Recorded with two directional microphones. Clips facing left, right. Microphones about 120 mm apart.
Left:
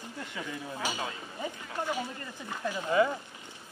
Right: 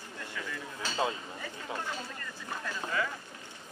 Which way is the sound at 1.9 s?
20° left (ahead or behind).